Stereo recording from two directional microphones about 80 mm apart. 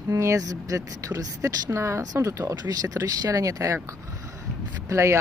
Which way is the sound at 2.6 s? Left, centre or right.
Right.